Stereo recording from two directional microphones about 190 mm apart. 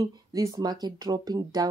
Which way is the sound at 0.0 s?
20° right (ahead or behind).